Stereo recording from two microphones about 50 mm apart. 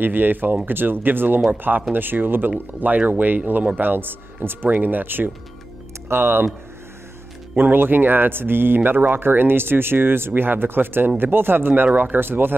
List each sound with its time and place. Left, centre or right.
0.0 s speech: right
7.5 s speech: right